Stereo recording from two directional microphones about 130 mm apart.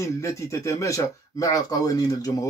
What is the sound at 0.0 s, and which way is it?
Speech, 25° left (ahead or behind).